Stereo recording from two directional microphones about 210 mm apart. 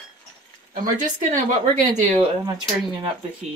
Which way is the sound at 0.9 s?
35° right (ahead or behind).